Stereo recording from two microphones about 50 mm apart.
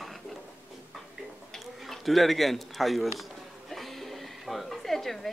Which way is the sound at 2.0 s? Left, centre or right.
Centre.